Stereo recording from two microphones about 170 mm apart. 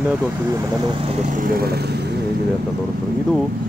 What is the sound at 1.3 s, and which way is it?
Speech, 55° right (ahead or behind).